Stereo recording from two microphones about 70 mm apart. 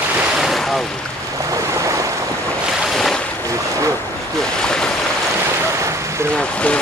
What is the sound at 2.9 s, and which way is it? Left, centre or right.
Boat, centre.